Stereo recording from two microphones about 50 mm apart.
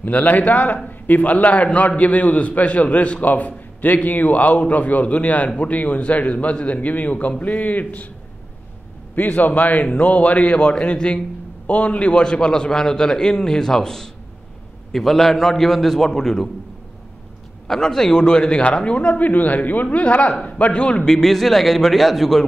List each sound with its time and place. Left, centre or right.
0.0 s a man's voice: left
9.1 s a man's voice: left; by 16.4 s centre
17.6 s a man's voice: centre